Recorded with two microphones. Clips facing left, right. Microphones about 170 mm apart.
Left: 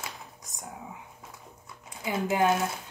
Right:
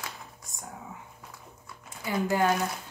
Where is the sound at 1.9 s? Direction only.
20° left (ahead or behind).